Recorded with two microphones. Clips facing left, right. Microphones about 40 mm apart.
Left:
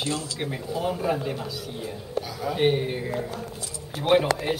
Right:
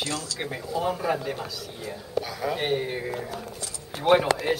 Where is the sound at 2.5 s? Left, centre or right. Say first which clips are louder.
Left 5 dB; centre.